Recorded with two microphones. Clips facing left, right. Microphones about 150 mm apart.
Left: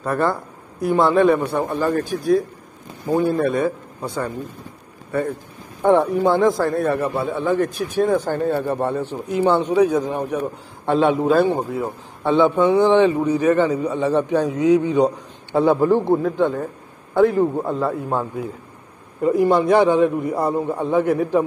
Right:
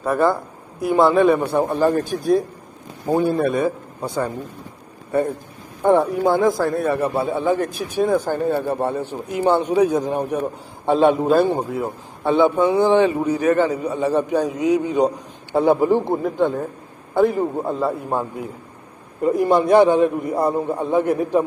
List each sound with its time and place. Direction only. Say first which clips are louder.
0.0 s speech: right 2 dB; 5° right (ahead or behind)
3.1 s speech: even; 15° right (ahead or behind)
5.9 s speech: even; 5° right (ahead or behind)
19.2 s speech: left 1 dB; 20° right (ahead or behind)